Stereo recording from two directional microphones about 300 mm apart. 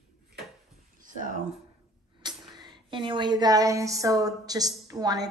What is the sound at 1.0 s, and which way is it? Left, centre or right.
Speech, right.